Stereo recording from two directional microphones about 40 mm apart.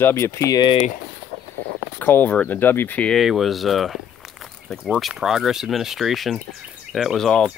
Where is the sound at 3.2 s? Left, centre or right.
Centre.